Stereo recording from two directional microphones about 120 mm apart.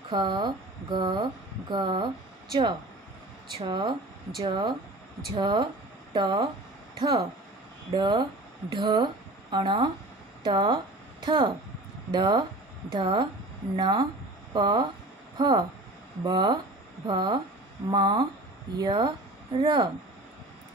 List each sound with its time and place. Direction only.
0.1 s speech: 40° right (ahead or behind)
3.6 s speech: 40° right (ahead or behind)